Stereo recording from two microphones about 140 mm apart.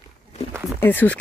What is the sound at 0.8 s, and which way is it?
Speech, 15° left (ahead or behind).